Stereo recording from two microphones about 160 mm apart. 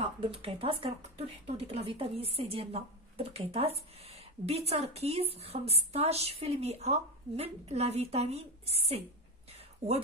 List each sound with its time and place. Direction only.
0.0 s speech: 35° right (ahead or behind)